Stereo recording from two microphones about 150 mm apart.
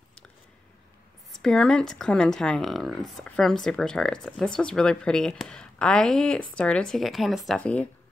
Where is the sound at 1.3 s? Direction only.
5° left (ahead or behind).